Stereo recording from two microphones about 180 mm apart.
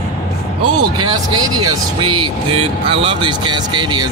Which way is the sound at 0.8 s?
20° right (ahead or behind).